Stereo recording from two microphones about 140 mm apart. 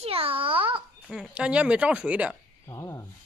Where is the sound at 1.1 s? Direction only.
5° right (ahead or behind).